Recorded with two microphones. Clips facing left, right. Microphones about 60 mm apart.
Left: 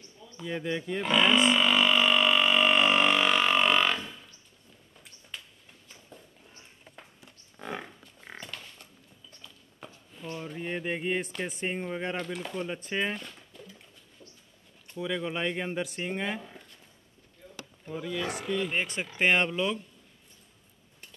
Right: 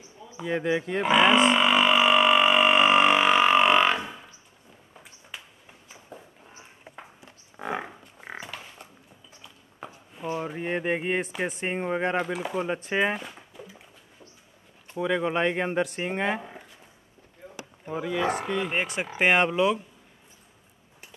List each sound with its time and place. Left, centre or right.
0.4 s grunt: centre
5.0 s a sound: centre
7.6 s livestock: centre
8.0 s pig: right
8.4 s creak: centre
9.3 s a sound: centre
12.3 s speech: centre
12.8 s a sound: centre
14.9 s speech: right
16.3 s speech: right
17.6 s boat: right
18.4 s speech: centre